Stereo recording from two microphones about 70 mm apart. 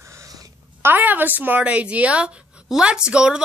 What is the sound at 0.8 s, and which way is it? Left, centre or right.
A woman's voice, right.